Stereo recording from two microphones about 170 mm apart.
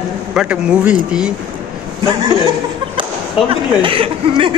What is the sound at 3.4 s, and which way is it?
Speech, 30° right (ahead or behind).